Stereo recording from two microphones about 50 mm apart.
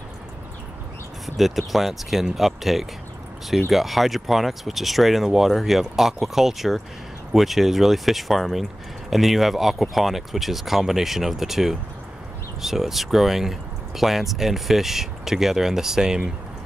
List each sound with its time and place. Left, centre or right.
1.2 s speech: centre